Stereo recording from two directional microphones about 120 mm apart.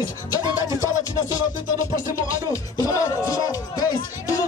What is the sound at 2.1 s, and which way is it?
Speech, 25° left (ahead or behind).